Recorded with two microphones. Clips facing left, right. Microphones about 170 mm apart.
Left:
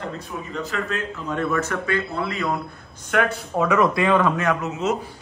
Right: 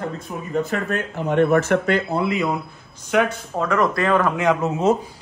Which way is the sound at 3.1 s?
Centre (ahead or behind).